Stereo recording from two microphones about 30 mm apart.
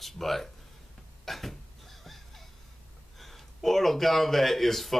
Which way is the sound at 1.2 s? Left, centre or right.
Centre.